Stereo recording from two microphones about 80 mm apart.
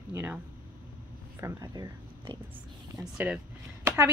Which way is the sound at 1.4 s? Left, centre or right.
Right.